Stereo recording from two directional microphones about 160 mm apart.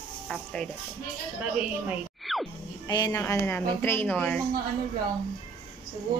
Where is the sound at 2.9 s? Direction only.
25° left (ahead or behind).